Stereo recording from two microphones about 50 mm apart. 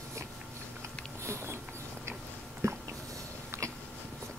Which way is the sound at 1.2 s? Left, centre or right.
Right.